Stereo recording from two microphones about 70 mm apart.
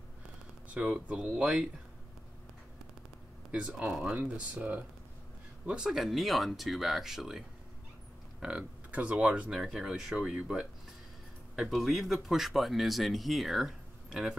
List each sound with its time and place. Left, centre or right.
0.7 s speech: centre
3.5 s speech: centre
5.7 s speech: centre
9.5 s speech: centre